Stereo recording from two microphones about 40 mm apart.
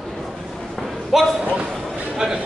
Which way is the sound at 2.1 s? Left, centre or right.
Centre.